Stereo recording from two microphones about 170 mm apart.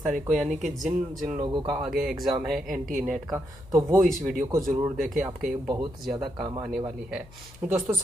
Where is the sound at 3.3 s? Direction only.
20° right (ahead or behind).